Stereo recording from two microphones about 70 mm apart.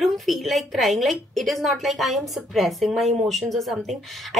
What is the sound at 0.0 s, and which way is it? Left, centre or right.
A woman's voice, centre.